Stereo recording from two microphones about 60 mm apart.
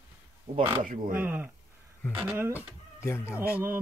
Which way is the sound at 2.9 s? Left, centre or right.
Left.